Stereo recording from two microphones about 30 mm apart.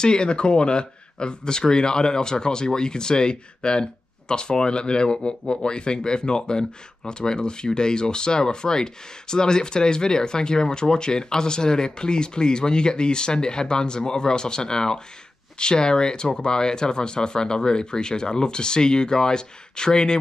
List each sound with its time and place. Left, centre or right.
0.0 s speech: left